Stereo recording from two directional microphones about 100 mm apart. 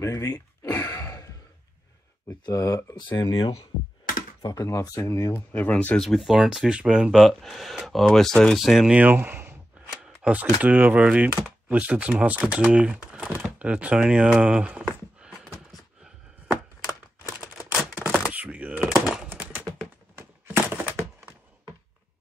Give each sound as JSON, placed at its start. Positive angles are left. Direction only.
{"t": 0.0, "sound": "a sound", "side_deg": 35}
{"t": 0.8, "sound": "sigh", "side_deg": 40}
{"t": 2.4, "sound": "speech", "side_deg": 35}
{"t": 3.2, "sound": "speech", "side_deg": 50}
{"t": 4.6, "sound": "speech", "side_deg": 30}
{"t": 5.9, "sound": "speech", "side_deg": 0}
{"t": 9.8, "sound": "speech", "side_deg": -10}
{"t": 15.1, "sound": "a sound", "side_deg": -10}
{"t": 18.9, "sound": "typing", "side_deg": -5}
{"t": 19.3, "sound": "a sound", "side_deg": -15}